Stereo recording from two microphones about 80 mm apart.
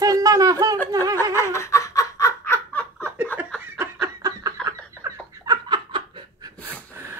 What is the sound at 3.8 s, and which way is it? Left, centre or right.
Snicker, right.